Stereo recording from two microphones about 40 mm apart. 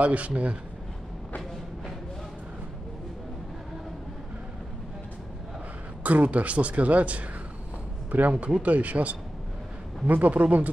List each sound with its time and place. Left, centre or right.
0.0 s speech: right
6.0 s speech: right